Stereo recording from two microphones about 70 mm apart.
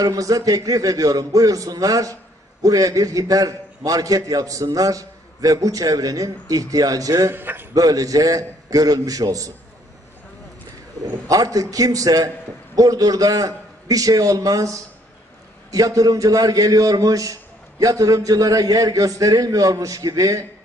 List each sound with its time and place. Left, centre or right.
0.0 s a man's voice: right
7.3 s a man's voice: right
7.7 s a man's voice: right
11.1 s a man's voice: right